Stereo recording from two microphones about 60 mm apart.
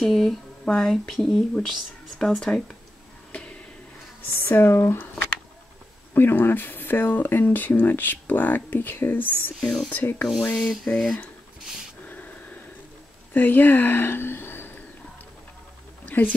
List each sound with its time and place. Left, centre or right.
0.0 s rub: centre
0.7 s speech: centre
3.3 s a sound: left
4.4 s speech: left
6.1 s speech: left
9.6 s rub: centre
9.8 s speech: left
10.5 s rub: centre
12.1 s a sound: left
13.3 s speech: left
16.1 s speech: left